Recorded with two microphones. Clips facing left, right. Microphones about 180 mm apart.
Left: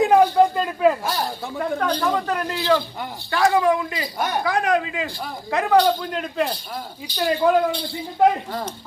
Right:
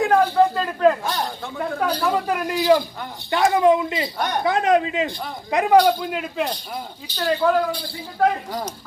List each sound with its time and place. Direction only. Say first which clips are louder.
0.0 s speech: left 2 dB; 15° left (ahead or behind)
1.8 s speech: right 2 dB; 10° right (ahead or behind)
7.2 s speech: left 1 dB; 15° left (ahead or behind)